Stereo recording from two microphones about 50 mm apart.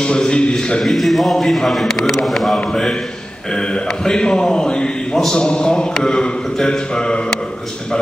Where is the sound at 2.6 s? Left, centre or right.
Centre.